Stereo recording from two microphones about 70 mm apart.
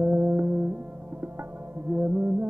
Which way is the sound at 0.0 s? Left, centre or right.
Right.